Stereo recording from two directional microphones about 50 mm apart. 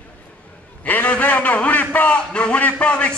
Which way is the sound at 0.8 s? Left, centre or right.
Left.